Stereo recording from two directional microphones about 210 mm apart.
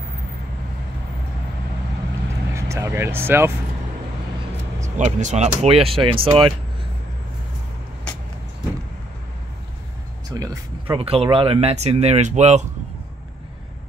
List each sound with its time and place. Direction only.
2.5 s speech: 15° right (ahead or behind)
4.8 s speech: 35° right (ahead or behind)
10.3 s speech: 20° right (ahead or behind); by 12.6 s 35° right (ahead or behind)